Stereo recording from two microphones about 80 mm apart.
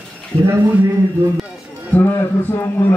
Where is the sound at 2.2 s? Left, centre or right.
Left.